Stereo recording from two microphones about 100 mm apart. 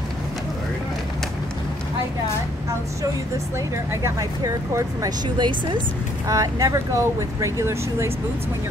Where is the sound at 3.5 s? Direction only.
30° right (ahead or behind).